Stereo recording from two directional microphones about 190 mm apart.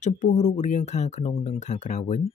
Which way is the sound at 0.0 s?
40° left (ahead or behind).